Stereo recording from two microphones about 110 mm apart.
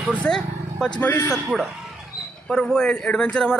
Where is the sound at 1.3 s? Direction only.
Centre (ahead or behind).